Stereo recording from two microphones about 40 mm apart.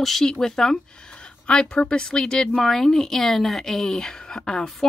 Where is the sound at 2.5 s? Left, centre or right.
Centre.